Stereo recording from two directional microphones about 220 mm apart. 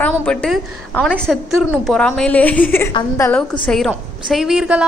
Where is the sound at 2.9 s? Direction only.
20° left (ahead or behind).